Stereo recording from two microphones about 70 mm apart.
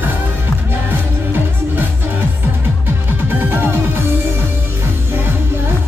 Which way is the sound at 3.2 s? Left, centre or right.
Right.